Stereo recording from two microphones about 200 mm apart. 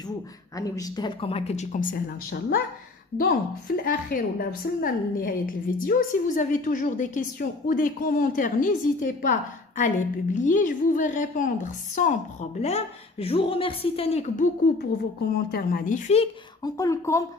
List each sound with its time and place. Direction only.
0.6 s a woman's voice: 20° left (ahead or behind); by 16.3 s 35° left (ahead or behind)
16.6 s speech: 15° left (ahead or behind)